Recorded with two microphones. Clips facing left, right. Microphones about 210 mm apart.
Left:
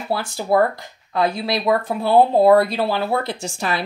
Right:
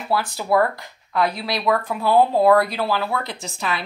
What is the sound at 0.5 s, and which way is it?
Speech, 20° left (ahead or behind).